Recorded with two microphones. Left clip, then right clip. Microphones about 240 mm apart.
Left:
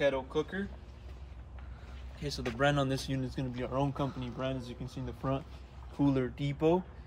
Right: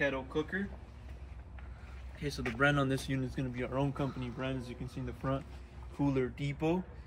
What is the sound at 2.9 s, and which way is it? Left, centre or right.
Speech, left.